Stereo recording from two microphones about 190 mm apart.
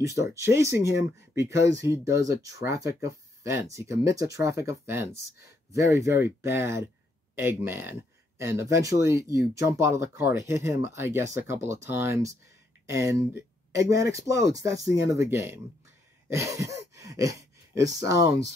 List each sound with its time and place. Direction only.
0.0 s speech: 15° right (ahead or behind)